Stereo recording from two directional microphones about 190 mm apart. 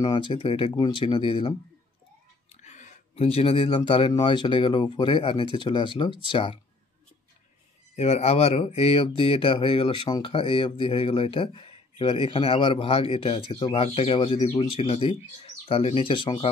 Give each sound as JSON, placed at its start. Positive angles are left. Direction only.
{"t": 0.0, "sound": "speech", "side_deg": 25}
{"t": 2.5, "sound": "speech", "side_deg": 40}
{"t": 7.9, "sound": "speech", "side_deg": 35}